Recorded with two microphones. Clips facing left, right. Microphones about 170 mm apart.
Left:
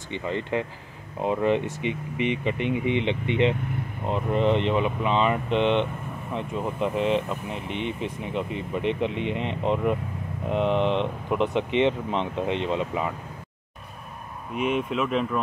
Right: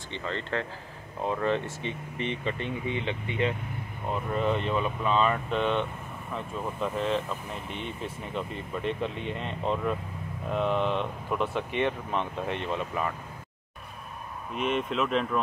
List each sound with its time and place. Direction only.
0.1 s speech: 15° left (ahead or behind)
7.6 s speech: 65° left (ahead or behind)
8.0 s speech: 20° left (ahead or behind)
14.5 s speech: 10° left (ahead or behind)